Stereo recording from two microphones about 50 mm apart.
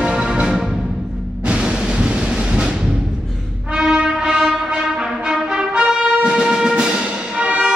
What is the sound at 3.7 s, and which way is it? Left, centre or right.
Music, centre.